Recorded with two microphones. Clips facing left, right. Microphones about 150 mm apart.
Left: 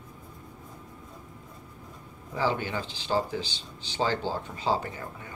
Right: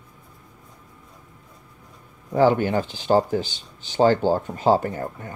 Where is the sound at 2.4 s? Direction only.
50° right (ahead or behind).